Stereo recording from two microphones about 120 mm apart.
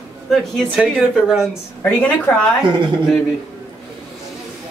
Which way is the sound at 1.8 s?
10° left (ahead or behind).